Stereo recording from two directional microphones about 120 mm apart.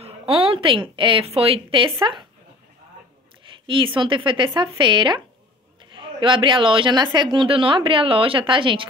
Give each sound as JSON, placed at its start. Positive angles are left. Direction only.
{"t": 0.0, "sound": "a woman's voice", "side_deg": -55}
{"t": 3.6, "sound": "a woman's voice", "side_deg": -45}